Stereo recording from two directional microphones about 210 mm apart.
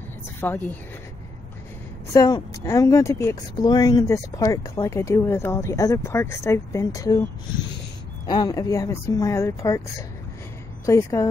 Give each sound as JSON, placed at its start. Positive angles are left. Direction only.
{"t": 0.4, "sound": "speech", "side_deg": 10}
{"t": 2.1, "sound": "speech", "side_deg": 15}
{"t": 8.3, "sound": "speech", "side_deg": 20}
{"t": 10.9, "sound": "speech", "side_deg": 15}